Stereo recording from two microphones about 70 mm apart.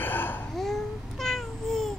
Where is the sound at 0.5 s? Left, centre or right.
Centre.